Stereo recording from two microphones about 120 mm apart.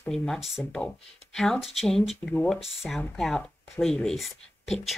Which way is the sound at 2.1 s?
15° left (ahead or behind).